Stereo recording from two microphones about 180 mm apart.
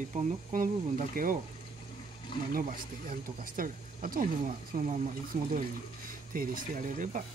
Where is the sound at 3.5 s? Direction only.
50° right (ahead or behind).